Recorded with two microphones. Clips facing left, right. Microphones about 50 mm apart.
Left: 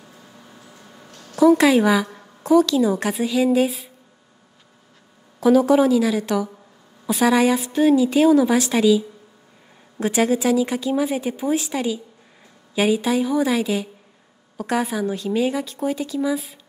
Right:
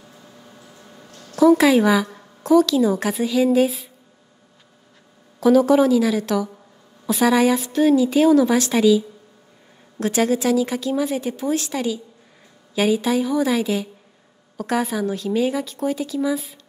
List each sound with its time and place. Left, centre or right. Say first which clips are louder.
0.2 s a sound: even; centre
1.2 s a woman's voice: even; centre
5.4 s speech: right 1 dB; centre